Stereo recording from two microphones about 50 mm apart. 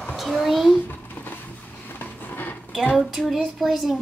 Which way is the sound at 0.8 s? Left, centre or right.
Left.